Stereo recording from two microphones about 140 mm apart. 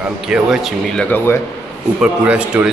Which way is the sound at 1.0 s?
15° left (ahead or behind).